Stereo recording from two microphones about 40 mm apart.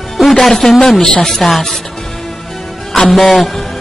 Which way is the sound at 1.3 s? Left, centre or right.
Centre.